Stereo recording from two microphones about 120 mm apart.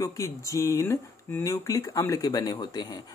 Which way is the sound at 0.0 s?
30° left (ahead or behind).